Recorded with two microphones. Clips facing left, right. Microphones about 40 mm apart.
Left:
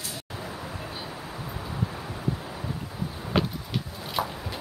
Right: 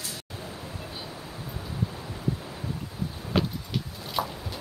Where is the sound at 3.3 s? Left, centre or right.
Centre.